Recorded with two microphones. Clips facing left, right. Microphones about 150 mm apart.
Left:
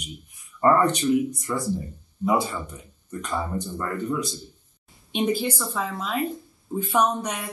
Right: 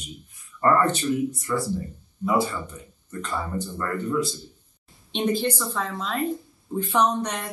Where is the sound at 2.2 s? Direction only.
20° left (ahead or behind).